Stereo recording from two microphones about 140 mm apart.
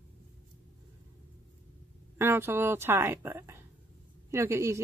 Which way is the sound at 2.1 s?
15° right (ahead or behind).